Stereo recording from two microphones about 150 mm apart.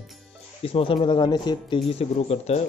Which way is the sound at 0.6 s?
40° left (ahead or behind).